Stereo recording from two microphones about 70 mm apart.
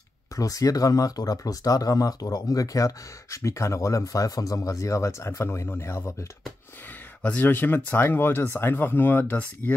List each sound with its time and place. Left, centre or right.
0.4 s speech: left
7.2 s speech: left